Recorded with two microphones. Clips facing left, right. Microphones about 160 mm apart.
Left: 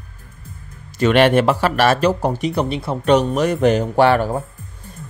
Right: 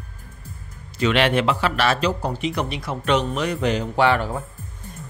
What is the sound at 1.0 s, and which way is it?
A man's voice, 50° left (ahead or behind).